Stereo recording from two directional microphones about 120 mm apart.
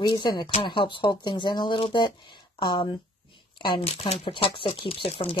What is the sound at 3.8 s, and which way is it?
Speech, 55° left (ahead or behind).